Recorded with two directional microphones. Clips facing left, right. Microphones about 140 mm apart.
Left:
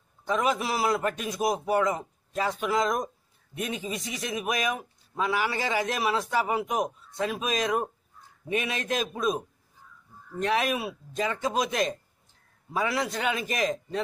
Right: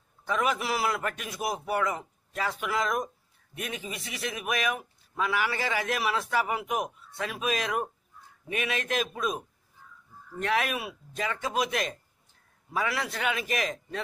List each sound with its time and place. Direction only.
0.3 s a man's voice: 20° left (ahead or behind)